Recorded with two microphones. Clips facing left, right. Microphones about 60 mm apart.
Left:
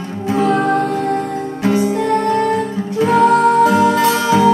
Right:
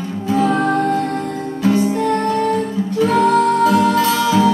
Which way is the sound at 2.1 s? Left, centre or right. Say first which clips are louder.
Left 2 dB; left.